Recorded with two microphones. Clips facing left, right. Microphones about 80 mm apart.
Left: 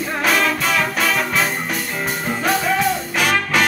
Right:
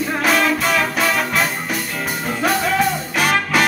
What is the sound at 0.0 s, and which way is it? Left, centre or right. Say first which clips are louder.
Music: right 1 dB; centre.